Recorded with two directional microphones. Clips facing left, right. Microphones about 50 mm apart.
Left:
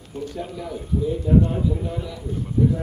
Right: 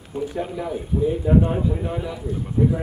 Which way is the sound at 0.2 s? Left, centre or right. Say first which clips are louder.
Right 4 dB; right.